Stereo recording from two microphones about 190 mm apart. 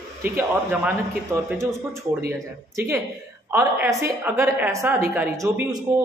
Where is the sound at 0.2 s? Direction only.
10° right (ahead or behind).